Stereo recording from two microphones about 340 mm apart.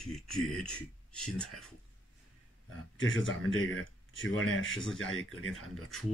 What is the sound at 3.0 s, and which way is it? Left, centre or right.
Speech, left.